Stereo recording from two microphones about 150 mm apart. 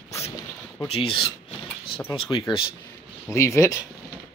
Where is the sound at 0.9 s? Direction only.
35° left (ahead or behind).